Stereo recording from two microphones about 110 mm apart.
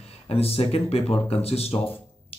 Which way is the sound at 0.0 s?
65° left (ahead or behind).